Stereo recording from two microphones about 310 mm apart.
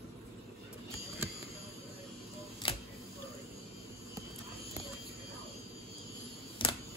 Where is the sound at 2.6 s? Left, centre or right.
Centre.